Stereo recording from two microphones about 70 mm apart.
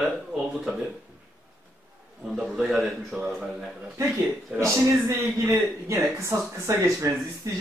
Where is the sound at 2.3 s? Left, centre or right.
Centre.